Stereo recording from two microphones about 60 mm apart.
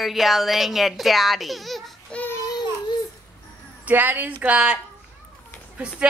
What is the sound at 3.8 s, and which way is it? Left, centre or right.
Speech, right.